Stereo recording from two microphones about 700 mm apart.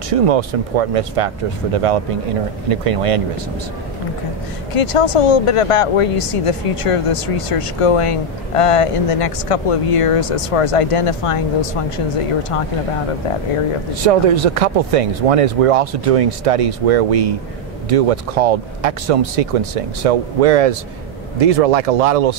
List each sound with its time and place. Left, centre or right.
0.1 s speech: right
4.7 s speech: left
14.0 s speech: right